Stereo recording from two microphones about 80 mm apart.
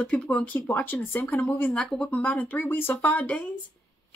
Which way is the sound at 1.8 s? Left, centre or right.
Centre.